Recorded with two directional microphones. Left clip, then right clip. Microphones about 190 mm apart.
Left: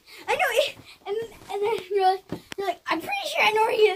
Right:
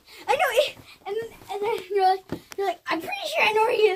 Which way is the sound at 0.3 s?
Centre (ahead or behind).